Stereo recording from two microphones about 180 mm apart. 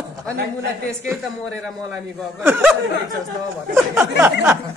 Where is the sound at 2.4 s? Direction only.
10° right (ahead or behind).